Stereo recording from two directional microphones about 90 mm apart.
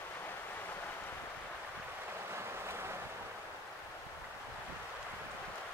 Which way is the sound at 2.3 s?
30° right (ahead or behind).